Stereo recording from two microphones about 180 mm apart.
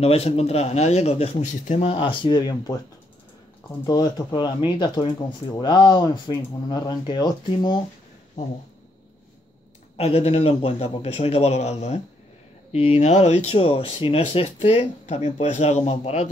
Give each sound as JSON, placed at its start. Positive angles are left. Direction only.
{"t": 0.0, "sound": "speech", "side_deg": 35}
{"t": 3.8, "sound": "speech", "side_deg": 20}
{"t": 9.9, "sound": "speech", "side_deg": 35}